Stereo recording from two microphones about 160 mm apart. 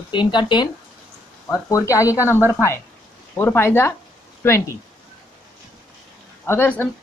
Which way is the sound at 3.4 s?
15° left (ahead or behind).